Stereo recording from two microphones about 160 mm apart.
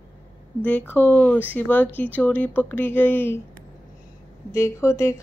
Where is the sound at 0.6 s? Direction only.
10° left (ahead or behind).